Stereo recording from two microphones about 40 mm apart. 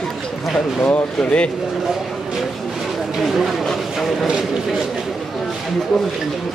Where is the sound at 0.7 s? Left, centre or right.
Left.